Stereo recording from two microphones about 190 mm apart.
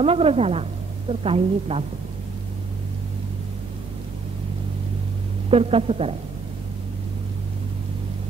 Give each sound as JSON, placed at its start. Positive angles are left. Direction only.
{"t": 0.0, "sound": "a woman's voice", "side_deg": -30}
{"t": 5.5, "sound": "a woman's voice", "side_deg": -30}